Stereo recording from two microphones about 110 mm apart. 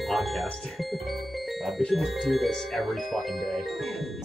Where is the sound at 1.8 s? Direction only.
Centre (ahead or behind).